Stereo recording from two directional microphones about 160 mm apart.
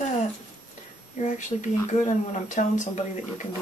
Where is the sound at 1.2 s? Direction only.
50° left (ahead or behind).